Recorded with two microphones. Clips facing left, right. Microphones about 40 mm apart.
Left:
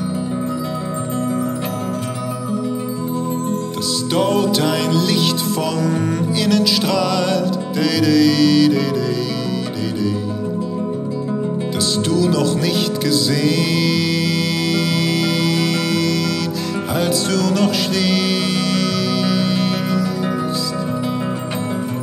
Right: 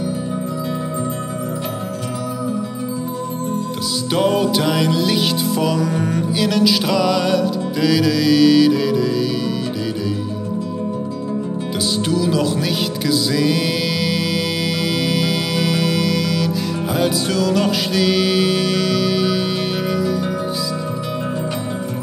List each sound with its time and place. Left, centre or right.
4.1 s music: centre
12.1 s music: centre